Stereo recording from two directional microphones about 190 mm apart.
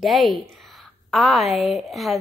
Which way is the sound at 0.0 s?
Centre (ahead or behind).